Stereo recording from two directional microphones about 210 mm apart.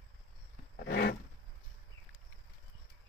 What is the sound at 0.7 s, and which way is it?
Roar, 50° left (ahead or behind).